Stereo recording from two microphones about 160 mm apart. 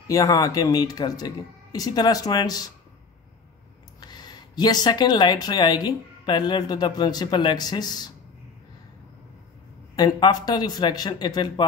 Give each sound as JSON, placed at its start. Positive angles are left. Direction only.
{"t": 0.1, "sound": "speech", "side_deg": 20}
{"t": 4.0, "sound": "speech", "side_deg": 25}
{"t": 9.9, "sound": "speech", "side_deg": 25}